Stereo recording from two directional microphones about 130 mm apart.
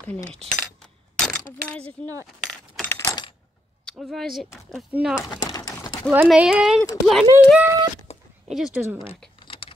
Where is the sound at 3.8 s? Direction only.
Centre (ahead or behind).